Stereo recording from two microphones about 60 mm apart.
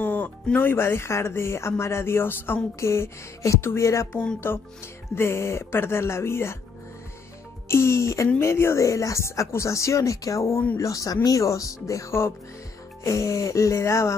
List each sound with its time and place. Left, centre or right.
0.0 s music: left
0.6 s speech: left
4.4 s speech: left
7.6 s speech: left
10.8 s speech: left